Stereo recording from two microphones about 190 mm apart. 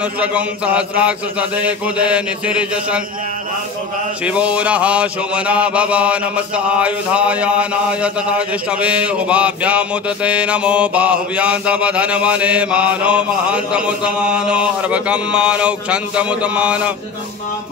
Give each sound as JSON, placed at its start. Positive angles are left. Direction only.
{"t": 0.2, "sound": "mantra", "side_deg": -5}
{"t": 4.3, "sound": "mantra", "side_deg": -5}